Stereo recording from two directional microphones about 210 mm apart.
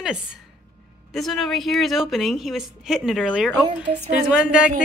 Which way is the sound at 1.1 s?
Centre (ahead or behind).